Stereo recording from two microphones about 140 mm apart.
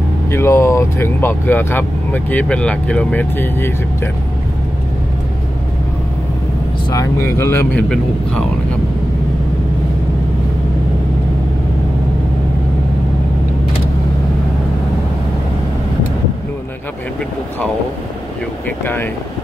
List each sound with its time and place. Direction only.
0.3 s speech: 20° left (ahead or behind)
6.9 s speech: 20° left (ahead or behind)